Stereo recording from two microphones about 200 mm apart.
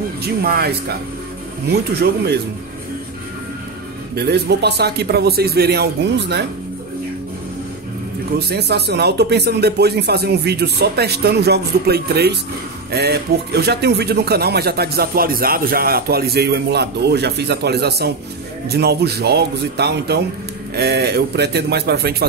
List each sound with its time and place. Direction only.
0.2 s speech: 50° right (ahead or behind)
4.1 s speech: 55° right (ahead or behind)
8.4 s speech: 55° right (ahead or behind)